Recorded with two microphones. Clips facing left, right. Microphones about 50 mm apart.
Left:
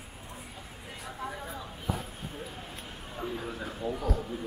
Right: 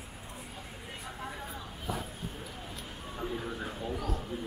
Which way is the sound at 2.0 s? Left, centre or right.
Centre.